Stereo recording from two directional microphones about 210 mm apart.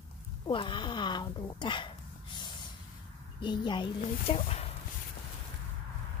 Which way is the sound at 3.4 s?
20° left (ahead or behind).